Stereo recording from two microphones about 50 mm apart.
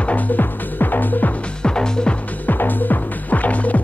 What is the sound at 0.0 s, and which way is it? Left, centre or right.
Music, left.